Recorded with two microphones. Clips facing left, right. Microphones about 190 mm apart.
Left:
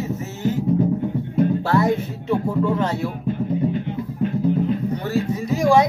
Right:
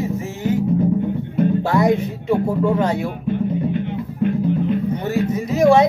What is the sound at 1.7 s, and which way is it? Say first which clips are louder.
Speech: right 2 dB; 15° right (ahead or behind).